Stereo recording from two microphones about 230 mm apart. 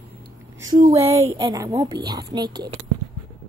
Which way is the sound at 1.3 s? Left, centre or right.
Centre.